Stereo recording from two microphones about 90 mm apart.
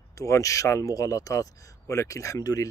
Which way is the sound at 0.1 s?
35° left (ahead or behind).